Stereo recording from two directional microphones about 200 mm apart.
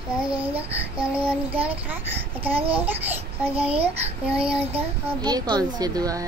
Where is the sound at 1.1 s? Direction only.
10° right (ahead or behind).